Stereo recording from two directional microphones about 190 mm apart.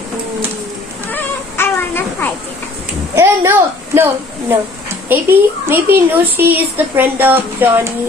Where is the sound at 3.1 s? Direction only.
15° right (ahead or behind).